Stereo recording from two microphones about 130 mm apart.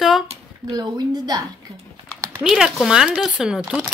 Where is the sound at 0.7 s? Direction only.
30° right (ahead or behind).